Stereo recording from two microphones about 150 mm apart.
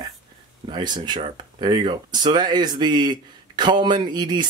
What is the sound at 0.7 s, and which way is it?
Speech, 30° right (ahead or behind).